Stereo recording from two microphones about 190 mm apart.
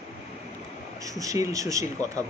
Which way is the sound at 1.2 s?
15° right (ahead or behind).